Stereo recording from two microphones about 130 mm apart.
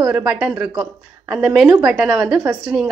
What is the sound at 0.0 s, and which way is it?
A woman's voice, 5° right (ahead or behind).